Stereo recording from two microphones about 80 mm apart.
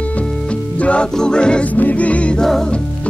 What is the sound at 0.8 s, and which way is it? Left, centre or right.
Music, centre.